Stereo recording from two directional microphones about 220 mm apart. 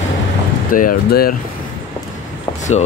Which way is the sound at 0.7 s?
40° left (ahead or behind).